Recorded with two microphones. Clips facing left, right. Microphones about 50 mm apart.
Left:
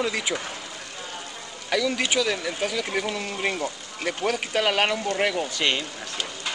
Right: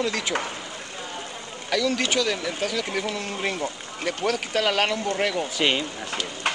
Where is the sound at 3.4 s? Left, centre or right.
Centre.